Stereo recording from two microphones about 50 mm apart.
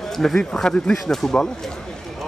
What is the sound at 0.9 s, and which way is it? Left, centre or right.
Speech, centre.